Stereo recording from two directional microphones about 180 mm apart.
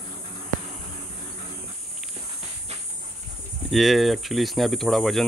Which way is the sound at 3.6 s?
Centre (ahead or behind).